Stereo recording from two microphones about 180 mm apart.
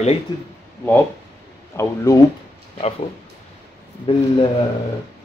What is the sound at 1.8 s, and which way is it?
Speech, 15° left (ahead or behind).